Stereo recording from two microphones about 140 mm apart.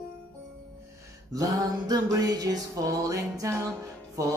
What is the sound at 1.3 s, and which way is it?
Music, 25° right (ahead or behind).